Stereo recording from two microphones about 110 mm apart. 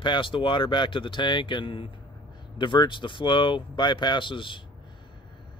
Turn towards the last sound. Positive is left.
turn(degrees=50)  # may be behind; listen again after turning